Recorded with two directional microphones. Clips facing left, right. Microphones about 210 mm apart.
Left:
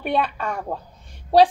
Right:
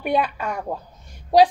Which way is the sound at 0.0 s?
10° right (ahead or behind).